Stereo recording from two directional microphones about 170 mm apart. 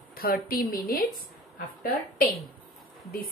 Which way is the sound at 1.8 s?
55° left (ahead or behind).